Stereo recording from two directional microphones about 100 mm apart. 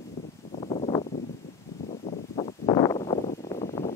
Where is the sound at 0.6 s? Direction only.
75° left (ahead or behind).